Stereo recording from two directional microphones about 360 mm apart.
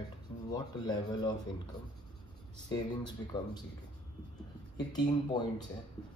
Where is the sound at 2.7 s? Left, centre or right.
Centre.